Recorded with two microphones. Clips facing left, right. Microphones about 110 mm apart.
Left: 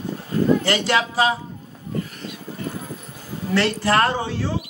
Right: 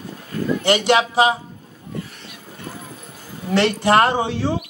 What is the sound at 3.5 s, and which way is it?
A man's voice, 20° right (ahead or behind).